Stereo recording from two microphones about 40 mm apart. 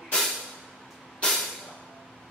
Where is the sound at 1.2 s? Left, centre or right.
Left.